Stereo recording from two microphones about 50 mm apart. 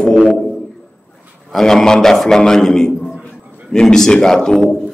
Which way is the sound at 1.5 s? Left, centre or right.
Centre.